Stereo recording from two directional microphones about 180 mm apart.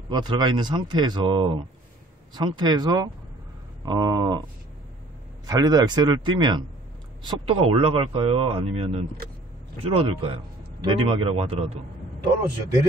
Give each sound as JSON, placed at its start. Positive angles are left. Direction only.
{"t": 0.1, "sound": "speech", "side_deg": -25}
{"t": 5.5, "sound": "speech", "side_deg": -20}